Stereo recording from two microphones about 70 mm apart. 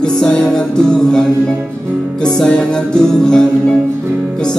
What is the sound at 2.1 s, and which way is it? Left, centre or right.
Music, centre.